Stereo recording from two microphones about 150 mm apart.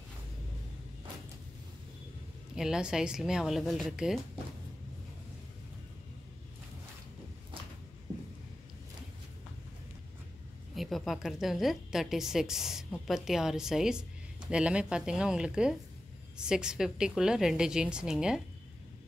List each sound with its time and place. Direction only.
2.5 s a woman's voice: 5° right (ahead or behind)
10.7 s a woman's voice: centre (ahead or behind)